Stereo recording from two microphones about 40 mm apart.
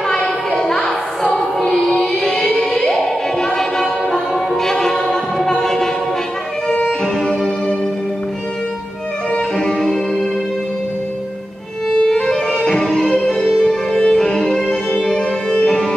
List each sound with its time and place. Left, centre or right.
0.5 s music: centre
7.2 s music: centre
9.3 s music: centre
11.9 s music: centre